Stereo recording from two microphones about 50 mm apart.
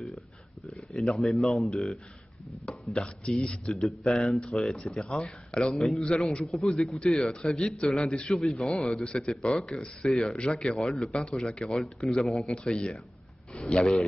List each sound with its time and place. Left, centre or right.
0.7 s speech: centre
4.7 s speech: centre
5.5 s speech: centre
6.5 s speech: centre
7.4 s speech: centre
8.5 s speech: centre
9.0 s speech: centre
9.3 s speech: centre
10.3 s speech: centre
12.5 s speech: centre
13.5 s a sound: left
13.7 s speech: centre